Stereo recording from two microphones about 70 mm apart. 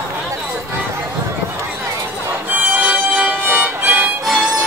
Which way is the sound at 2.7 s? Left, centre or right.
Centre.